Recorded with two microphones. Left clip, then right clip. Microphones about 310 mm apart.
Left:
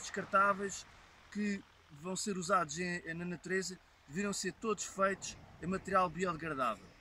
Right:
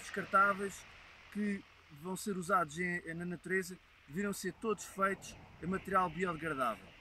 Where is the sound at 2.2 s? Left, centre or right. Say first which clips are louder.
Even; centre.